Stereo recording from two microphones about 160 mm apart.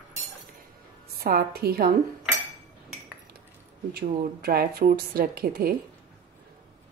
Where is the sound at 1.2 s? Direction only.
70° right (ahead or behind).